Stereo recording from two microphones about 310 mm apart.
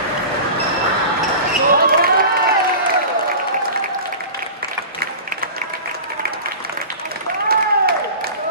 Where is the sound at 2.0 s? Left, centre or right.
Right.